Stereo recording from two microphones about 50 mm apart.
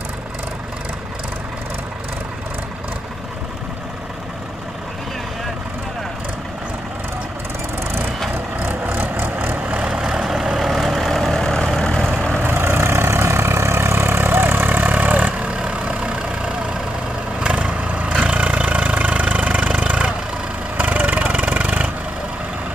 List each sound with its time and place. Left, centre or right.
8.6 s vehicle: right
9.7 s vehicle: centre
11.4 s vehicle: centre
12.4 s vehicle: right
20.7 s vehicle: right